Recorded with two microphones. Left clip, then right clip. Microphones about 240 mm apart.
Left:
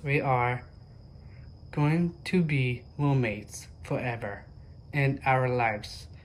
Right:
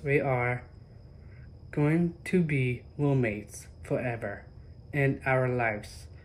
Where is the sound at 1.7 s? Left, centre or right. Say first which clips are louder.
Right 1 dB; centre.